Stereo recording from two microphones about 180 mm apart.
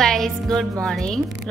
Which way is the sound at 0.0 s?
Centre (ahead or behind).